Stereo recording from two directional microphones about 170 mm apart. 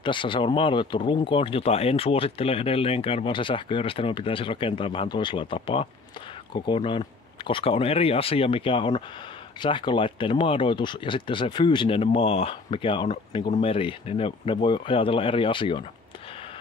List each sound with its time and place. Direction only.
0.0 s speech: 30° left (ahead or behind)